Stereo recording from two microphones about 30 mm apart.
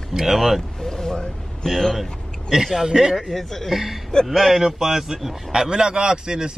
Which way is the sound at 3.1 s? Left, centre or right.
Centre.